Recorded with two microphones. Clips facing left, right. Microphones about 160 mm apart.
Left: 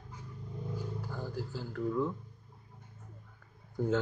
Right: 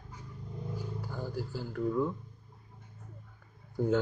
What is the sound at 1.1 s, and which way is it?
Speech, 10° right (ahead or behind).